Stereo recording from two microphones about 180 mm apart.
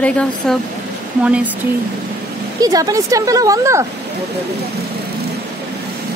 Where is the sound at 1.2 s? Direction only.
5° right (ahead or behind).